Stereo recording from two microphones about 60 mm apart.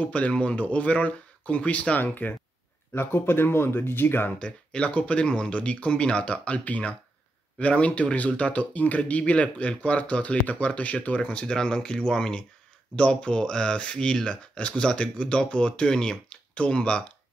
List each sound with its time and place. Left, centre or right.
0.0 s speech: left
2.9 s speech: left
4.4 s speech: centre